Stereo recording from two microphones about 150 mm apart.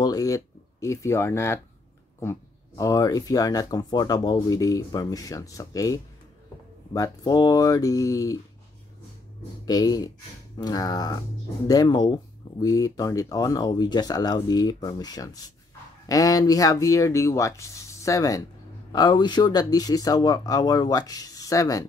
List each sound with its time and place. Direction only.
0.0 s speech: 25° left (ahead or behind)
9.7 s speech: 25° left (ahead or behind)